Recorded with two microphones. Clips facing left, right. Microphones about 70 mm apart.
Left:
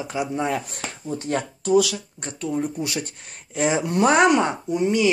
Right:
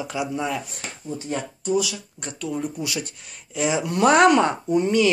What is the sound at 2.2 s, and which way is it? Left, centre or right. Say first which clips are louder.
Speech: left 2 dB; left.